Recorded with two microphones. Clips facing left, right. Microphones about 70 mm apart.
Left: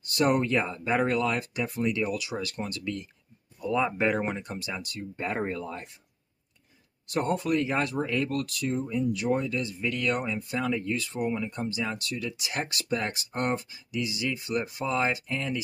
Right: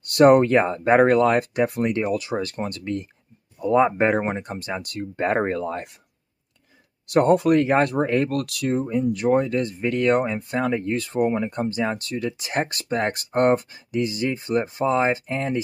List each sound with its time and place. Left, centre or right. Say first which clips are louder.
0.0 s speech: right 11 dB; right
5.1 s speech: right 9 dB; right
7.1 s speech: right 10 dB; right